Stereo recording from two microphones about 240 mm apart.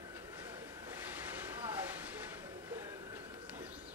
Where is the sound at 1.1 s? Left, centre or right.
Centre.